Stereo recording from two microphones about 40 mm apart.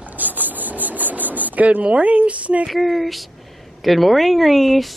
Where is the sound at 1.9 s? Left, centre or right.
Right.